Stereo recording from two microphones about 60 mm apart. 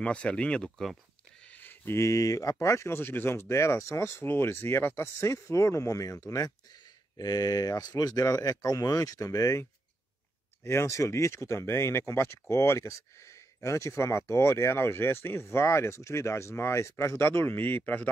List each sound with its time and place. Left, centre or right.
0.0 s speech: centre
1.4 s a sound: left
2.0 s speech: left
3.0 s speech: left
4.2 s speech: left
7.2 s speech: left
10.6 s speech: left